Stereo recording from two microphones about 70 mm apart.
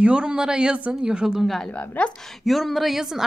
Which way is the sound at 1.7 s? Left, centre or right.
Centre.